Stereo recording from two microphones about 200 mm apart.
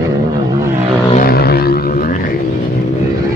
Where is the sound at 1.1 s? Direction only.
50° left (ahead or behind).